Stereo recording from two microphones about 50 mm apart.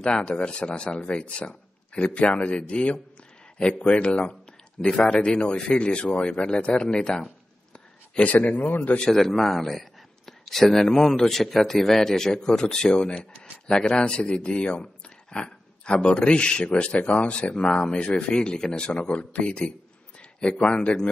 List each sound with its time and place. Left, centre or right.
0.0 s a man's voice: centre
8.3 s a man's voice: left
9.1 s a man's voice: centre